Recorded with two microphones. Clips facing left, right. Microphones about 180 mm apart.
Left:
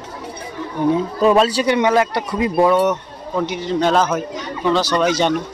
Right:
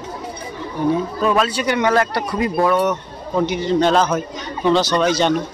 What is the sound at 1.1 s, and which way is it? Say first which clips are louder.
Speech: left 4 dB; 35° left (ahead or behind).